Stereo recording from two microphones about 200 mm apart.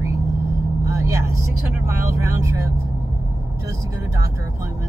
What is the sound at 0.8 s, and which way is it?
Speech, 15° right (ahead or behind).